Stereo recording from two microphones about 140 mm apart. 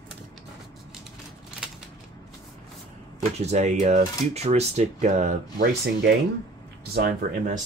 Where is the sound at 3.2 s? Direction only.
50° right (ahead or behind).